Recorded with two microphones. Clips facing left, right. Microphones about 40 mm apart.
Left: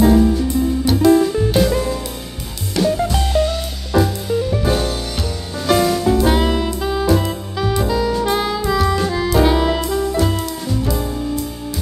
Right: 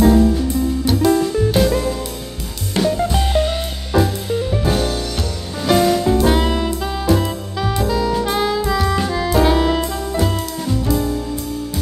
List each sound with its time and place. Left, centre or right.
0.0 s music: centre
2.8 s music: centre
3.2 s music: right
3.9 s music: centre
5.7 s music: centre